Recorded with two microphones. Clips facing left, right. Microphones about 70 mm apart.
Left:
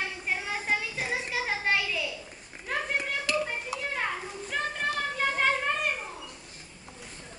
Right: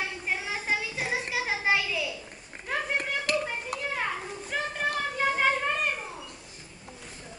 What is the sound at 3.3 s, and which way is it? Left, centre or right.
Hands, right.